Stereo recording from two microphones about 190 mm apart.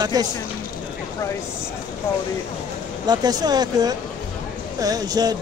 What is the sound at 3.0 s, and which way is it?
Speech, 20° right (ahead or behind).